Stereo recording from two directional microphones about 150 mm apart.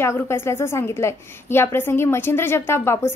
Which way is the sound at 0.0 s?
15° left (ahead or behind).